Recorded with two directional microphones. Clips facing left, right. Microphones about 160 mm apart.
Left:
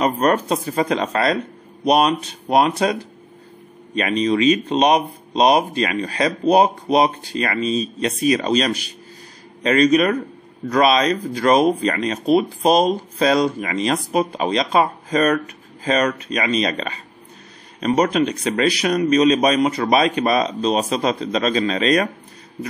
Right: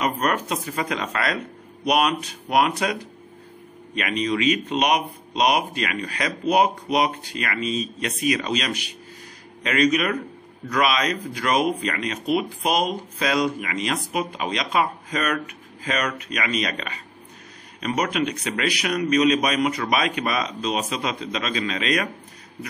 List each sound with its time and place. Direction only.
0.0 s speech: 30° left (ahead or behind)